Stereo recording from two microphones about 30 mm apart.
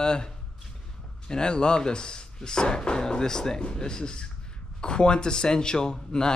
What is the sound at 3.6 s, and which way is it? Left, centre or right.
Speech, left.